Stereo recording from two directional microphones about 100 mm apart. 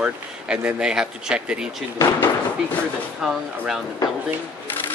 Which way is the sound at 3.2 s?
Centre (ahead or behind).